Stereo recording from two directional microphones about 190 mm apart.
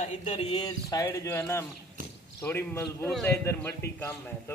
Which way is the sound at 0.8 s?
20° left (ahead or behind).